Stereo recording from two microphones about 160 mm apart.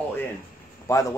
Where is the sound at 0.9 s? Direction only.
20° left (ahead or behind).